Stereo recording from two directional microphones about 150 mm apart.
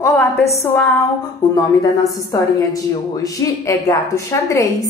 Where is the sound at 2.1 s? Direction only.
25° left (ahead or behind).